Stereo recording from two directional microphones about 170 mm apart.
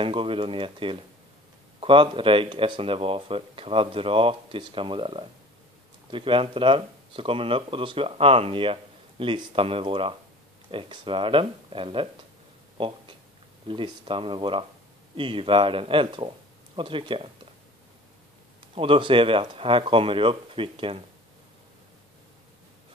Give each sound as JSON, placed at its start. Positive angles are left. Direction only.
{"t": 0.0, "sound": "speech", "side_deg": -30}
{"t": 18.8, "sound": "speech", "side_deg": -30}